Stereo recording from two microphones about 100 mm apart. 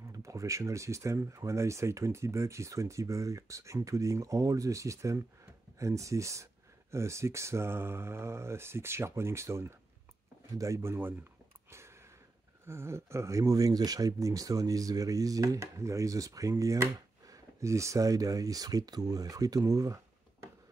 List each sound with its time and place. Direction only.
0.1 s speech: 30° right (ahead or behind)
12.6 s speech: 25° right (ahead or behind)